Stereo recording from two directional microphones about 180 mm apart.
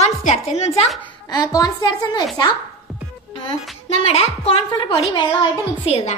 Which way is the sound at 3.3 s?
30° left (ahead or behind).